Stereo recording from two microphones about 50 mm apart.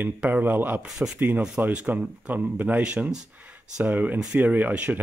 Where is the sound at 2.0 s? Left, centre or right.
Right.